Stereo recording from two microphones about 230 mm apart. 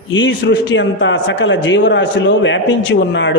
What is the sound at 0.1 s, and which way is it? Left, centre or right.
A man's voice, left.